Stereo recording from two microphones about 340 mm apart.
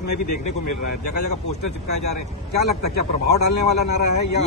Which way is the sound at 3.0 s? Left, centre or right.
Left.